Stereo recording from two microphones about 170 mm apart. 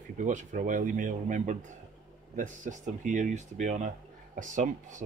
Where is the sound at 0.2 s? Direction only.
50° right (ahead or behind).